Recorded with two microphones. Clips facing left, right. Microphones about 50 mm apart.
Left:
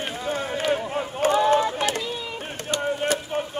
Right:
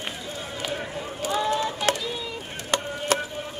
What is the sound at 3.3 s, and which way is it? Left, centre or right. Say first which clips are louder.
Music: left 7 dB; left.